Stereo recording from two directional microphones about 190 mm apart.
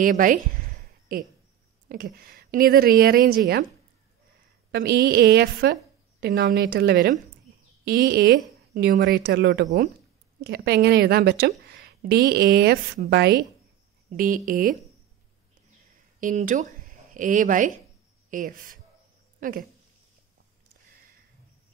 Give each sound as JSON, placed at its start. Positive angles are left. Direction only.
{"t": 0.0, "sound": "speech", "side_deg": -45}
{"t": 1.9, "sound": "speech", "side_deg": -50}
{"t": 4.7, "sound": "a woman's voice", "side_deg": -55}
{"t": 14.1, "sound": "speech", "side_deg": -45}
{"t": 16.2, "sound": "speech", "side_deg": -45}